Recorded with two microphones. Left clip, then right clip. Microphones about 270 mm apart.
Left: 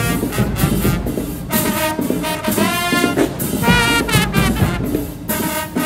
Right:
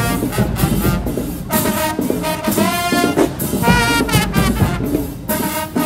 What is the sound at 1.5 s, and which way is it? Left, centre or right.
Music, centre.